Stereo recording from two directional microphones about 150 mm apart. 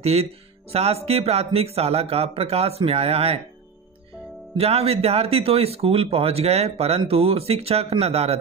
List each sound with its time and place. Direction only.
0.0 s speech: 45° right (ahead or behind)
4.6 s speech: 40° right (ahead or behind)